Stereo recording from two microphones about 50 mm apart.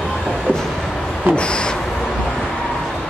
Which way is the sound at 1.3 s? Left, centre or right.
Left.